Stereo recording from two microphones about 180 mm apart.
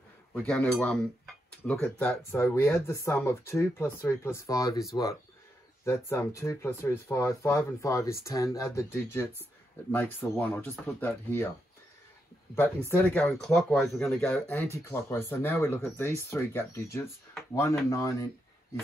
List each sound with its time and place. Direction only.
0.3 s speech: 5° left (ahead or behind)
12.5 s speech: 10° left (ahead or behind)